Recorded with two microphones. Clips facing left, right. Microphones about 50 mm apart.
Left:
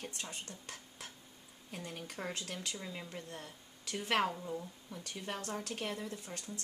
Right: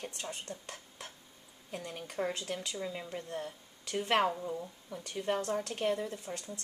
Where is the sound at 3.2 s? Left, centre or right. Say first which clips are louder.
Right 8 dB; right.